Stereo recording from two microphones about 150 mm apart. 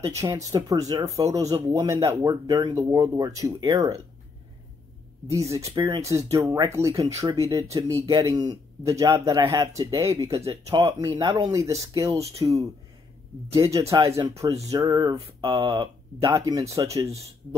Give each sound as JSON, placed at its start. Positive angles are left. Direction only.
{"t": 0.0, "sound": "speech", "side_deg": -20}
{"t": 5.8, "sound": "speech", "side_deg": -20}
{"t": 15.1, "sound": "mantra", "side_deg": -35}
{"t": 15.7, "sound": "speech", "side_deg": -25}